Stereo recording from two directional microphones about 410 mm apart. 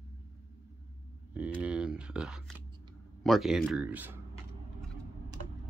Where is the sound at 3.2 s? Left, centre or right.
Centre.